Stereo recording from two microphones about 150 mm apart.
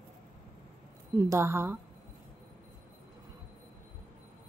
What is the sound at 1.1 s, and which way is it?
Speech, 20° right (ahead or behind).